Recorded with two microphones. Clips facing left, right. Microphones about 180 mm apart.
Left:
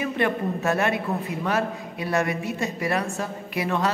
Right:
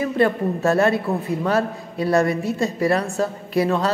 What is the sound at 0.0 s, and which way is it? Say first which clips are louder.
A man's voice: right 5 dB; 35° right (ahead or behind).